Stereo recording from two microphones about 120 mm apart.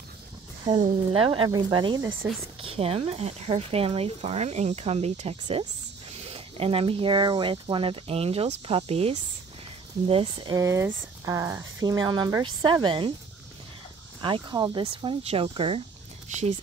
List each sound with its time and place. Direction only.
0.7 s speech: 45° right (ahead or behind)
2.6 s speech: 50° right (ahead or behind)
10.5 s speech: 25° right (ahead or behind); by 13.1 s 40° right (ahead or behind)
14.2 s speech: 40° right (ahead or behind)
15.2 s speech: 50° right (ahead or behind)